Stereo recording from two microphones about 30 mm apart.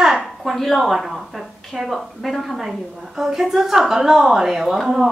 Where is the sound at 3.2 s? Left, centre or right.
Centre.